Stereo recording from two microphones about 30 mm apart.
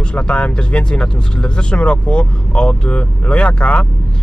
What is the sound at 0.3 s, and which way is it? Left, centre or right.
Speech, left.